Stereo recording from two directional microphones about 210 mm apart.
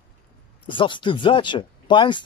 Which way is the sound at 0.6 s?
25° left (ahead or behind).